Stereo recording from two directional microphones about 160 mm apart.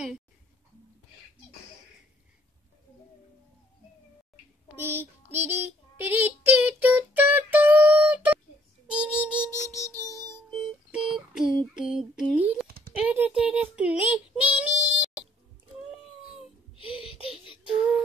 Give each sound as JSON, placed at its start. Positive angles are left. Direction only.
{"t": 4.7, "sound": "child singing", "side_deg": -15}
{"t": 9.6, "sound": "music", "side_deg": -20}
{"t": 10.2, "sound": "music", "side_deg": -5}
{"t": 12.6, "sound": "a sound", "side_deg": -65}
{"t": 12.9, "sound": "child singing", "side_deg": -10}
{"t": 16.7, "sound": "wail", "side_deg": 35}
{"t": 17.3, "sound": "a sound", "side_deg": -5}